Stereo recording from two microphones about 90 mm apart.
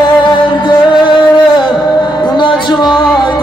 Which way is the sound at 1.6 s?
60° left (ahead or behind).